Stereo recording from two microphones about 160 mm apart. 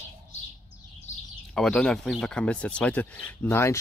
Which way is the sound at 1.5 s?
5° left (ahead or behind).